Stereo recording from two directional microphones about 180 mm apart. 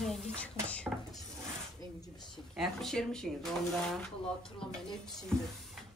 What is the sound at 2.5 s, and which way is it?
Speech, centre (ahead or behind).